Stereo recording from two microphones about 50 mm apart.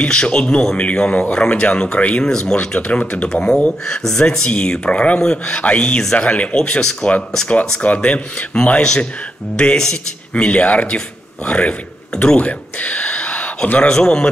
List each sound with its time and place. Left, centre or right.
0.1 s speech: centre
2.2 s speech: centre
4.5 s speech: left
7.8 s speech: left
10.3 s speech: left
12.4 s a sound: left
13.9 s speech: centre